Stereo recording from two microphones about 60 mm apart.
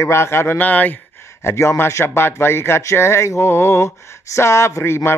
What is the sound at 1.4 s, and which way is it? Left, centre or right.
A man's voice, left.